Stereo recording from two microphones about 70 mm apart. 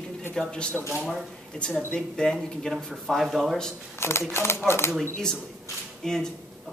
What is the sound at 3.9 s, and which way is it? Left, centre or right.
Speech, left.